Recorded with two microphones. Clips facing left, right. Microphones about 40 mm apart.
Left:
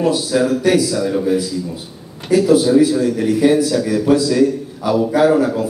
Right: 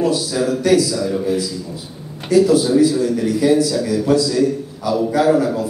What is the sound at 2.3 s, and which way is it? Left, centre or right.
A man's voice, left.